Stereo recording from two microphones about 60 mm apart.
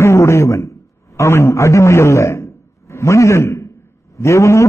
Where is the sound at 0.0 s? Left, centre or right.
Left.